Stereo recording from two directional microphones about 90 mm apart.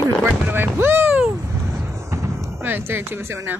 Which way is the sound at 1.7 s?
35° right (ahead or behind).